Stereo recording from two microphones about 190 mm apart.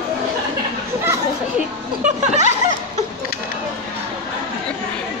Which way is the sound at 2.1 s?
40° right (ahead or behind).